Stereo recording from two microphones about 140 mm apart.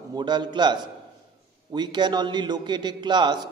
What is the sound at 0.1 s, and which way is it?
A man's voice, 30° right (ahead or behind).